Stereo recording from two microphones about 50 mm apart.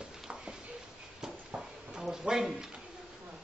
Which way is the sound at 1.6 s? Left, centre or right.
Centre.